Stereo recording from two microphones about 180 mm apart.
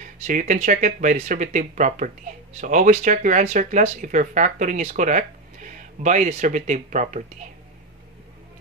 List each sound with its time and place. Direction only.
0.0 s speech: 45° right (ahead or behind)